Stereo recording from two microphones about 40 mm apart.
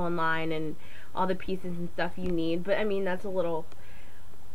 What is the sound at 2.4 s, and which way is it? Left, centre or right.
Speech, centre.